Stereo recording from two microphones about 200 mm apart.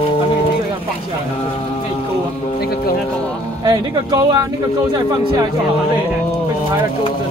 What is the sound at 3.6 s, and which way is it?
Music, 20° right (ahead or behind).